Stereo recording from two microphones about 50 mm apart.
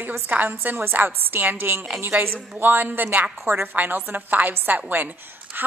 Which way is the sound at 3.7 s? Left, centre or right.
Right.